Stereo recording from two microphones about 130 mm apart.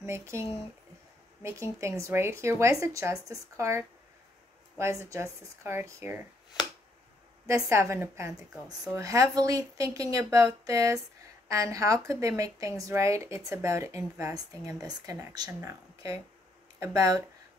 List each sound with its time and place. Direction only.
0.0 s speech: 20° right (ahead or behind)
7.4 s speech: 25° right (ahead or behind)